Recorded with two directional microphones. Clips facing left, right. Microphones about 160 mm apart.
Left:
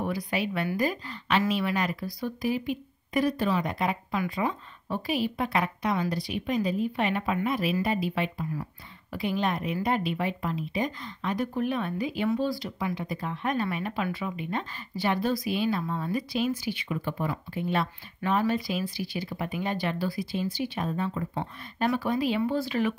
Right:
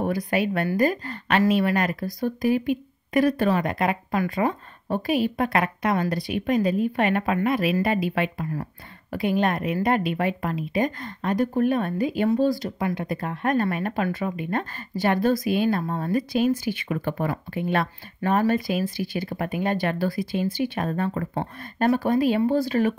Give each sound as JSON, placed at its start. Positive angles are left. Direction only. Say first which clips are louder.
{"t": 0.0, "sound": "speech", "louder": "right 6 dB", "side_deg": -50}